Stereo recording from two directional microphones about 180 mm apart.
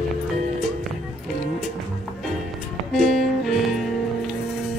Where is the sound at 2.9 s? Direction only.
Centre (ahead or behind).